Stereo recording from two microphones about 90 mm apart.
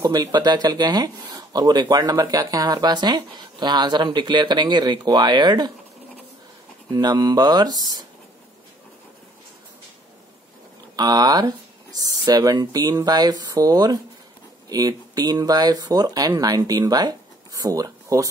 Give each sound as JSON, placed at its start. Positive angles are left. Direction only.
{"t": 0.0, "sound": "speech", "side_deg": -50}
{"t": 6.9, "sound": "speech", "side_deg": -45}
{"t": 11.0, "sound": "speech", "side_deg": -45}